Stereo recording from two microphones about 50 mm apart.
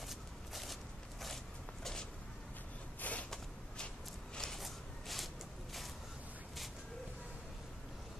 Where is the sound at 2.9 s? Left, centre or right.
Left.